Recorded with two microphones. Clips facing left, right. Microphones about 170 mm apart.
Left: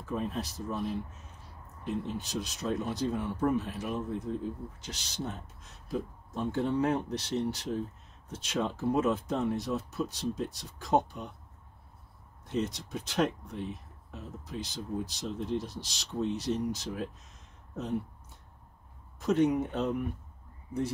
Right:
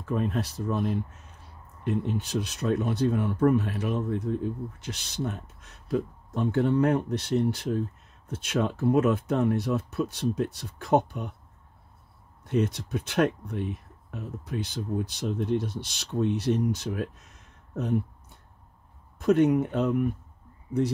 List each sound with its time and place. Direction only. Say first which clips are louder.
0.1 s speech: right 6 dB; 65° right (ahead or behind)
12.4 s speech: right 6 dB; 60° right (ahead or behind)
19.1 s speech: right 5 dB; 60° right (ahead or behind)